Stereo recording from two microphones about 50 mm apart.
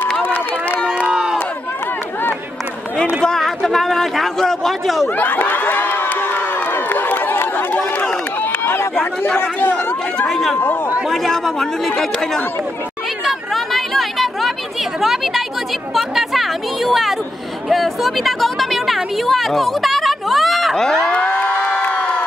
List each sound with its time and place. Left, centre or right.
0.2 s run: left
1.0 s crowd: centre
3.3 s a sound: centre
5.1 s crowd: left
6.7 s run: left
8.9 s speech: left
10.2 s speech: centre
13.7 s a sound: centre
15.9 s speech: centre
21.1 s music: left
21.7 s crowd: left